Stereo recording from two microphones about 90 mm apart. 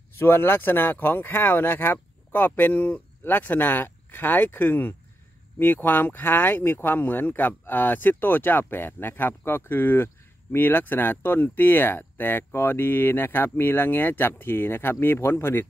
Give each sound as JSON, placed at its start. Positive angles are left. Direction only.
{"t": 0.2, "sound": "speech", "side_deg": 25}